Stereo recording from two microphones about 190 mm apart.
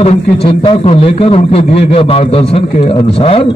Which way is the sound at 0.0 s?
30° left (ahead or behind).